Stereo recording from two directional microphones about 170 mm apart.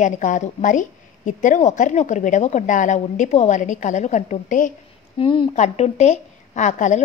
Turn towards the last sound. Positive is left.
turn(degrees=45)  # may be behind; listen again after turning